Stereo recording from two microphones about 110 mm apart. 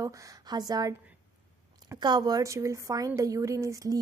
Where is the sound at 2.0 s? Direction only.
40° right (ahead or behind).